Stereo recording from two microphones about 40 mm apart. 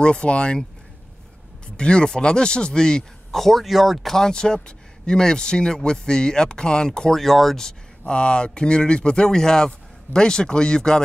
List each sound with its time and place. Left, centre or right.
0.0 s speech: left
1.8 s speech: left
3.3 s speech: centre
4.1 s speech: centre
7.2 s speech: centre
7.6 s speech: left